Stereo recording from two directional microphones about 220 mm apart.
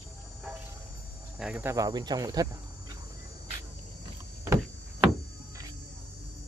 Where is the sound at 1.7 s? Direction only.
15° right (ahead or behind).